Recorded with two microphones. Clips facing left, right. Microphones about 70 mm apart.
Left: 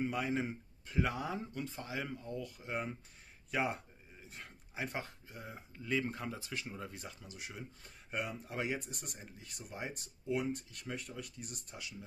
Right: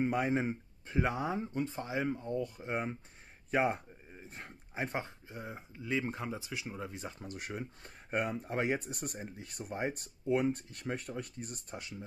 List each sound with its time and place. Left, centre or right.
0.0 s speech: right
7.2 s speech: right